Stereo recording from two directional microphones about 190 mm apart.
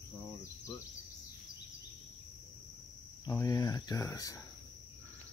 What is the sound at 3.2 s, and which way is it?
Speech, 20° left (ahead or behind).